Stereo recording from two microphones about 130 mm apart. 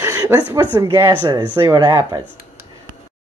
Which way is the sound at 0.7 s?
20° right (ahead or behind).